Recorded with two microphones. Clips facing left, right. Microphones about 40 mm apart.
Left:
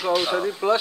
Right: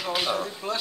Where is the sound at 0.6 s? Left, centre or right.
Left.